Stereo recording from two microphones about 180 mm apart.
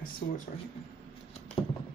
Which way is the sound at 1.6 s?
30° left (ahead or behind).